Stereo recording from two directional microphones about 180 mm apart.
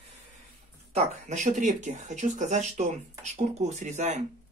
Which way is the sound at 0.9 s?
40° right (ahead or behind).